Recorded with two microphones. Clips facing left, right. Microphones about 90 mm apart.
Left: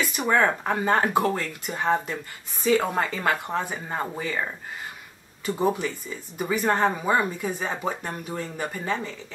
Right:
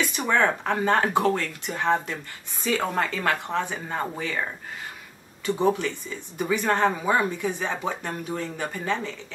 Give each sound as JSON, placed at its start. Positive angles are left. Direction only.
{"t": 0.0, "sound": "speech", "side_deg": 5}